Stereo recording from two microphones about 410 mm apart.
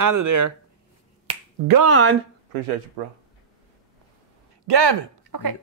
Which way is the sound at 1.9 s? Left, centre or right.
Right.